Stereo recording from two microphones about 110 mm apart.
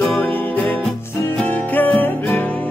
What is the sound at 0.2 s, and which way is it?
Music, 15° left (ahead or behind).